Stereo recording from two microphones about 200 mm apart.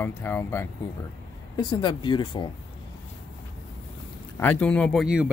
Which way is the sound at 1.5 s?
20° left (ahead or behind).